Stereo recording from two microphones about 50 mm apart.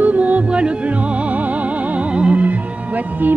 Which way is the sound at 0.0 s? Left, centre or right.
Right.